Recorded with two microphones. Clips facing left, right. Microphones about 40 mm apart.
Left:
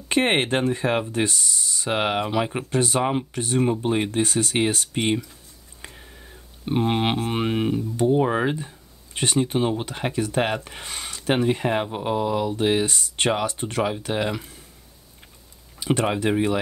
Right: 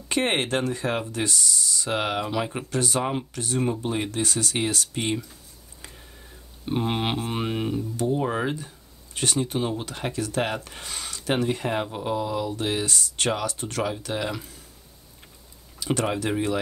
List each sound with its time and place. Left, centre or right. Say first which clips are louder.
0.1 s speech: left 3 dB; left
3.1 s speech: left 4 dB; centre
3.4 s speech: left 4 dB; left
5.8 s a sound: left 4 dB; left
6.1 s a sound: left 2 dB; centre
7.2 s speech: left 4 dB; left
15.8 s speech: left 3 dB; left